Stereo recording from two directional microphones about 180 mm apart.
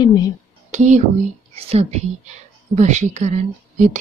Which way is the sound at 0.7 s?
45° right (ahead or behind).